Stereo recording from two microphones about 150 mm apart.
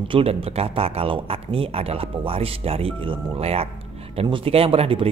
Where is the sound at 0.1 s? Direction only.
40° right (ahead or behind).